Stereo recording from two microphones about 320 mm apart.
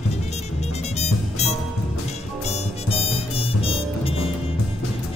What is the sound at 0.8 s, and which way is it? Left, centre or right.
Music, centre.